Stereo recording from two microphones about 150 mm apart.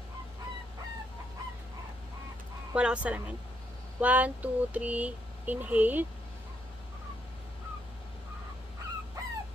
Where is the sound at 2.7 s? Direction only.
5° right (ahead or behind).